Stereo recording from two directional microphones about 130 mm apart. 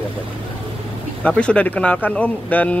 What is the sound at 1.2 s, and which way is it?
Speech, 10° left (ahead or behind).